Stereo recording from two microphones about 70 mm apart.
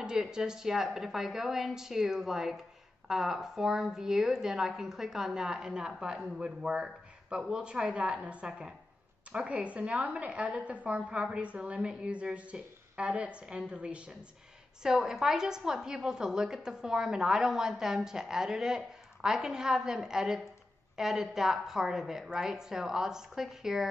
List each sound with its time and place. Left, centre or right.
0.0 s a woman's voice: centre